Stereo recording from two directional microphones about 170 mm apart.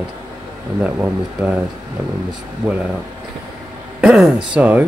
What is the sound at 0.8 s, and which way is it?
Speech, 10° right (ahead or behind).